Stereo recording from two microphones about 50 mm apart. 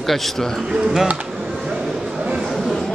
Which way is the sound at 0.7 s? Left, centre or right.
Centre.